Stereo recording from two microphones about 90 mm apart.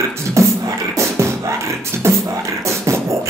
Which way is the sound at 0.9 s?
35° right (ahead or behind).